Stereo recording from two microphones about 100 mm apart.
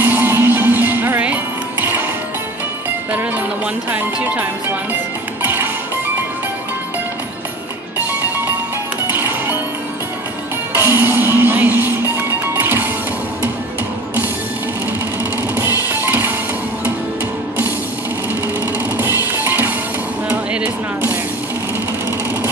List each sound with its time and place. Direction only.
0.0 s music: 20° right (ahead or behind)
3.1 s music: 20° right (ahead or behind)
3.9 s speech: 15° right (ahead or behind)
5.4 s music: 20° right (ahead or behind)
9.1 s music: 20° right (ahead or behind)
10.8 s music: 20° right (ahead or behind)
15.9 s music: 20° right (ahead or behind)
19.3 s music: 20° right (ahead or behind)
20.2 s a sound: 15° right (ahead or behind)